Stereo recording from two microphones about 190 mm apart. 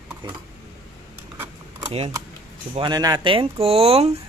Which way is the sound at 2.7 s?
20° right (ahead or behind).